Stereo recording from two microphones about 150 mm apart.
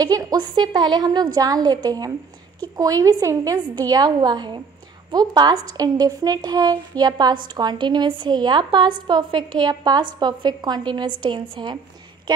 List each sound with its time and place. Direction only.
0.0 s a woman's voice: 25° right (ahead or behind)